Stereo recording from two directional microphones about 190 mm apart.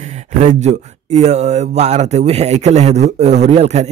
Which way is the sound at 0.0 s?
40° right (ahead or behind).